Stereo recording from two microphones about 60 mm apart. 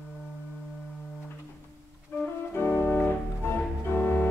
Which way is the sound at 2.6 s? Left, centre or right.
Left.